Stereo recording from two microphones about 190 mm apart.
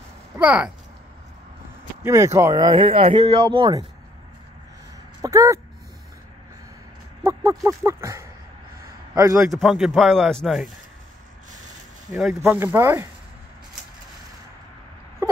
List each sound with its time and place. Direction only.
0.4 s speech: 5° right (ahead or behind)
2.0 s speech: 15° right (ahead or behind)
5.2 s speech: 15° right (ahead or behind)
7.2 s a man's voice: 15° right (ahead or behind)
9.5 s speech: centre (ahead or behind)
12.4 s speech: 10° right (ahead or behind)